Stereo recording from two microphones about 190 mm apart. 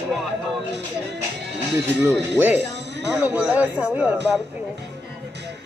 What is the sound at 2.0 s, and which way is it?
Speech, 10° right (ahead or behind).